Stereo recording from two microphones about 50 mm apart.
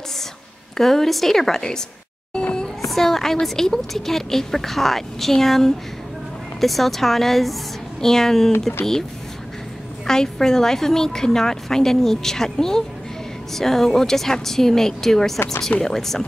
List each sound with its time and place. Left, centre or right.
0.7 s a woman's voice: centre
2.3 s a sound: centre
2.9 s a sound: centre
3.4 s a woman's voice: centre
10.0 s a woman's voice: centre
15.3 s speech: left
15.8 s a woman's voice: centre